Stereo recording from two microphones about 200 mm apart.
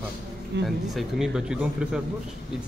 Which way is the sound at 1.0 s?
Centre (ahead or behind).